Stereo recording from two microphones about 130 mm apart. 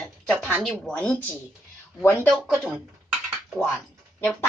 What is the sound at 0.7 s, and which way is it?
Speech, 10° left (ahead or behind).